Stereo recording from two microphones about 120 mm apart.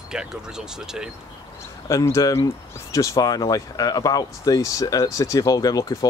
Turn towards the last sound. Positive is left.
turn(degrees=30)  # may be behind; listen again after turning